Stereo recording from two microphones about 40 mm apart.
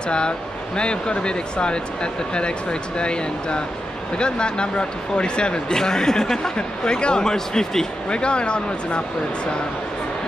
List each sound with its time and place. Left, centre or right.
0.7 s speech: left
3.0 s speech: left
8.1 s speech: left